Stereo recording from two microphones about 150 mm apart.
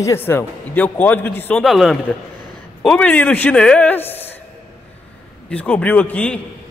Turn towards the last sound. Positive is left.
turn(degrees=10)  # may be behind; listen again after turning